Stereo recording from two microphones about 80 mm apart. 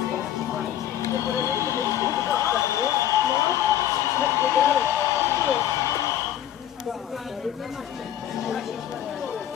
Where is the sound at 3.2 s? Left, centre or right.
Left.